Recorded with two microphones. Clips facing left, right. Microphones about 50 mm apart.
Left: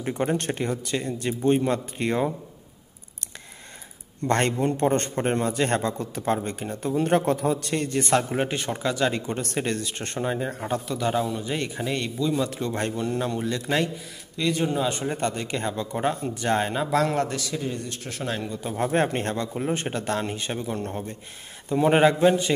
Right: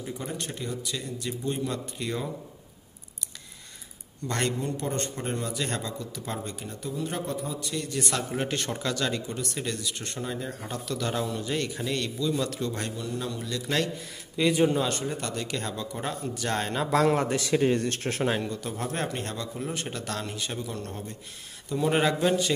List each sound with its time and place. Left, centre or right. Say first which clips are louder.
0.0 s a man's voice: left 9 dB; left
4.3 s a man's voice: left 6 dB; left
9.3 s a man's voice: left 5 dB; left
11.1 s a man's voice: left 3 dB; centre; by 13.8 s left
14.3 s a man's voice: right 2 dB; centre
14.9 s speech: left 4 dB; left
16.7 s a man's voice: even; centre
17.3 s a man's voice: right 4 dB; right
17.6 s speech: right 6 dB; right
18.5 s speech: left 2 dB; centre
18.8 s a man's voice: left 10 dB; left